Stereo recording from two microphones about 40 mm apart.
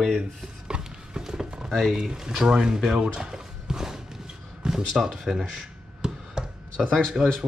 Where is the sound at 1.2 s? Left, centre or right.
Centre.